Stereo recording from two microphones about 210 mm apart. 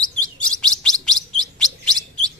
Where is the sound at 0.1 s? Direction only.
5° left (ahead or behind).